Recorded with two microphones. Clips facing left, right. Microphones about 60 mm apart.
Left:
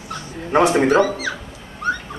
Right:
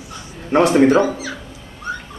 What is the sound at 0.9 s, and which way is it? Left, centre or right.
Speech, left.